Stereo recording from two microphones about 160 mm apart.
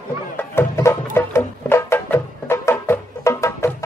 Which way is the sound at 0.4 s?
15° left (ahead or behind).